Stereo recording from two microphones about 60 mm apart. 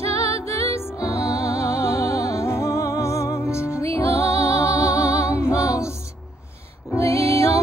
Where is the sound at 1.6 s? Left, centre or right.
Left.